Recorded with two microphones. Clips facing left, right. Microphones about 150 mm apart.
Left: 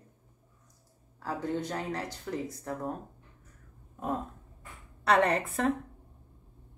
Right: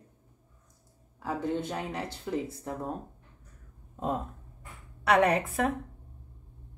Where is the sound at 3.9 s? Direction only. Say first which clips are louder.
Right 2 dB; 20° right (ahead or behind).